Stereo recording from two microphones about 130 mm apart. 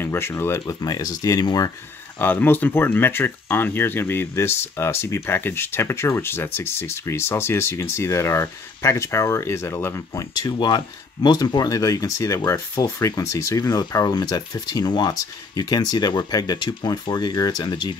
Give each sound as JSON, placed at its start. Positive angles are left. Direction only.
{"t": 0.0, "sound": "speech", "side_deg": 20}
{"t": 2.1, "sound": "speech", "side_deg": 15}